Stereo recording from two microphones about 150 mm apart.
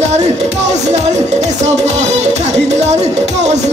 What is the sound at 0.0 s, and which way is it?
Music, 50° right (ahead or behind).